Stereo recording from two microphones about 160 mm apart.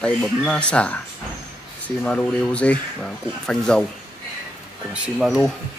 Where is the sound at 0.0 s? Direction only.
5° left (ahead or behind).